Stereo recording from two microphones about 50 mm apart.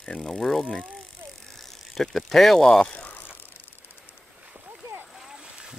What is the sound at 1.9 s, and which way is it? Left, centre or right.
Speech, centre.